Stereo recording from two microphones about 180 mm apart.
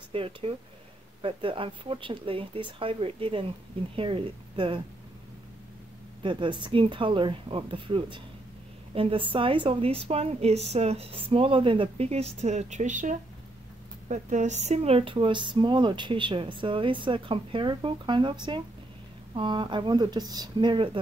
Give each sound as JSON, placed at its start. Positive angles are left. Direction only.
{"t": 0.1, "sound": "a woman's voice", "side_deg": -30}
{"t": 6.2, "sound": "a woman's voice", "side_deg": -25}